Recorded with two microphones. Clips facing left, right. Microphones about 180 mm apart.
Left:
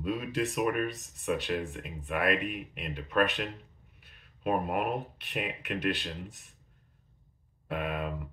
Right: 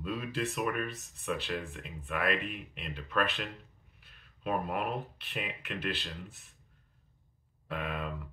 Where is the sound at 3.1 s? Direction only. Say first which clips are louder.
Left 4 dB; 45° left (ahead or behind).